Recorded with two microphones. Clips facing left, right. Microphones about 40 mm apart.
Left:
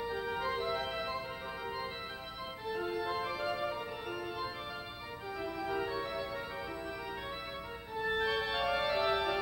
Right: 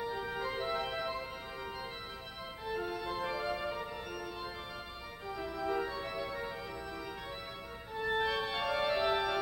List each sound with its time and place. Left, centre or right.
0.0 s organ: centre
2.6 s organ: centre
5.4 s organ: centre
7.9 s music: centre